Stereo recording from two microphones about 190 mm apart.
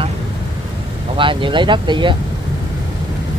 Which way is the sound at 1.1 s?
25° right (ahead or behind).